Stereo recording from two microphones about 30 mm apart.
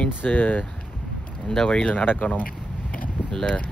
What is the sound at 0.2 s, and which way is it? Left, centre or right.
Speech, left.